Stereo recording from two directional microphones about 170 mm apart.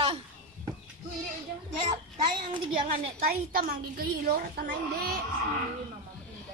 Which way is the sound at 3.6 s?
60° right (ahead or behind).